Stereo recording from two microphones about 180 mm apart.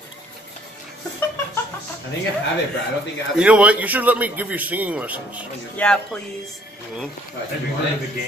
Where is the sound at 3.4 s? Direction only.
5° right (ahead or behind).